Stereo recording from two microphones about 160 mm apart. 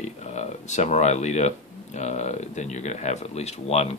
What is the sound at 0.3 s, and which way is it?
Speech, 45° left (ahead or behind).